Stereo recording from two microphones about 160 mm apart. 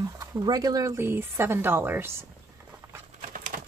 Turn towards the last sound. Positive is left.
turn(degrees=-55)  # may be behind; listen again after turning